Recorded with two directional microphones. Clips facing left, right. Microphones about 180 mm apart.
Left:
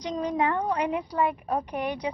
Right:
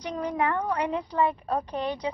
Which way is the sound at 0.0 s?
15° left (ahead or behind).